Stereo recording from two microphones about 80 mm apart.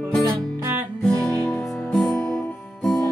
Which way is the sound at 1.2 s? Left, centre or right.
Centre.